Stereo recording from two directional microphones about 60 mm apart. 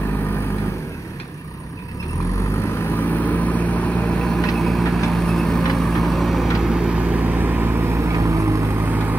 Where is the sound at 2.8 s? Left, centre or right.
Left; by 8.1 s right.